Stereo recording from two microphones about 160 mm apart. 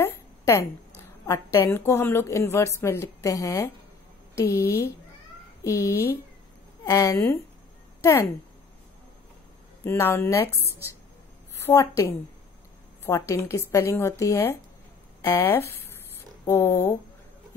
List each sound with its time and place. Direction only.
0.0 s a sound: 15° left (ahead or behind)
1.2 s a woman's voice: 15° left (ahead or behind)
5.6 s a woman's voice: 20° left (ahead or behind)
9.8 s a woman's voice: 15° left (ahead or behind)
13.3 s a woman's voice: 20° left (ahead or behind)